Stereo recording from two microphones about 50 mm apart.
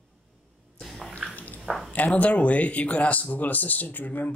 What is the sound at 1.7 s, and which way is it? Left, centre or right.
Speech, centre.